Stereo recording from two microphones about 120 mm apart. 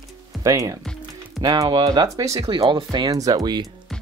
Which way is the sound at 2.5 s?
40° right (ahead or behind).